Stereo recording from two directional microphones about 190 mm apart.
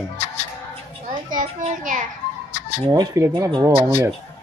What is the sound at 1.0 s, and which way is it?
A child's voice, 40° right (ahead or behind).